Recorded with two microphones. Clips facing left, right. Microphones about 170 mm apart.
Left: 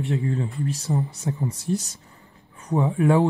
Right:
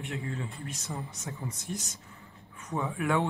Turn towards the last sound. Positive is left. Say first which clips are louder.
# left 9 dB
turn(degrees=35)  # may be behind; listen again after turning